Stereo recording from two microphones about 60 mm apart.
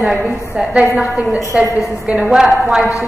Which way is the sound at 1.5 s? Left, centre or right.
Centre.